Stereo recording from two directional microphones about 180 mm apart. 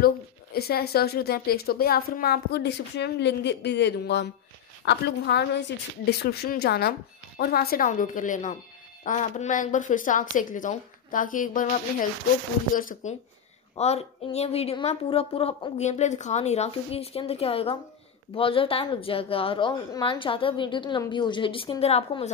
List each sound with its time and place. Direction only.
0.0 s a woman's voice: 60° left (ahead or behind)
13.7 s a woman's voice: 35° left (ahead or behind)